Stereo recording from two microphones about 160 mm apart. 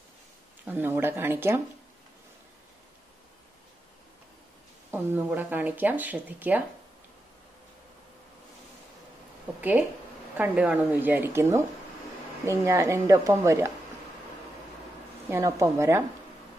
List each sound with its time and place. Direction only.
0.7 s speech: 10° right (ahead or behind)
4.9 s speech: 10° right (ahead or behind)
9.6 s speech: 10° right (ahead or behind)
15.2 s speech: 15° right (ahead or behind)